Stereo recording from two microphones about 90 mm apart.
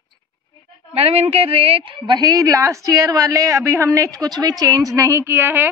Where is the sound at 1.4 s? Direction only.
90° right.